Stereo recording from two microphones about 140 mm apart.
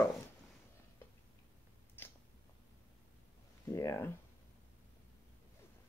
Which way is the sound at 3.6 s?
20° left (ahead or behind).